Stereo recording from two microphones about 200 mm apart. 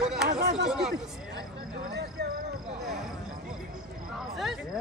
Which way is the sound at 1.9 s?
55° right (ahead or behind).